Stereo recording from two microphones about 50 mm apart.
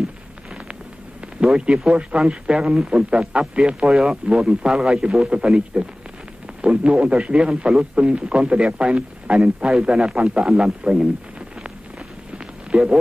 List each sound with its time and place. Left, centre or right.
1.4 s a man's voice: centre
12.7 s speech: right